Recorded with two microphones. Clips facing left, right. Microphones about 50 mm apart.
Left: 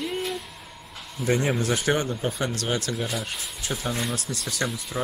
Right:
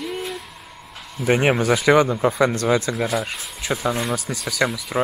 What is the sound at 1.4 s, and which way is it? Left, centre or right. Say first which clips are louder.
Speech: right 7 dB; right.